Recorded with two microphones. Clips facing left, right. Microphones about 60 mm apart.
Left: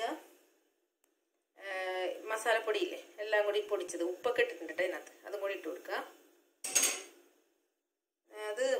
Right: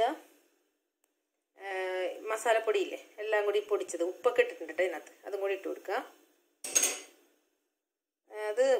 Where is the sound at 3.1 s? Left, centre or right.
Right.